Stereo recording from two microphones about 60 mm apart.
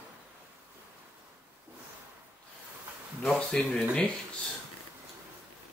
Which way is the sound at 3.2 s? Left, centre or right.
Centre.